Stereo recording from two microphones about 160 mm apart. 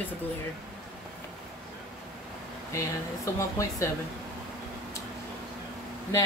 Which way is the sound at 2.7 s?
20° left (ahead or behind).